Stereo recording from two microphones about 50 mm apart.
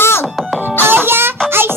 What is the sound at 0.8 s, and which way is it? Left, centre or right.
Music, right.